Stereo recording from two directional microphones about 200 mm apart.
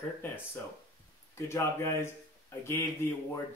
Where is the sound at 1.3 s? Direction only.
15° left (ahead or behind).